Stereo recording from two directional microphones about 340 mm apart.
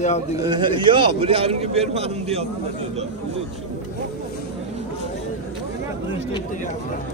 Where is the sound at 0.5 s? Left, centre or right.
Centre.